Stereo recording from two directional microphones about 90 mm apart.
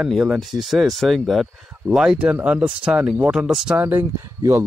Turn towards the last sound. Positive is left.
turn(degrees=-30)  # may be behind; listen again after turning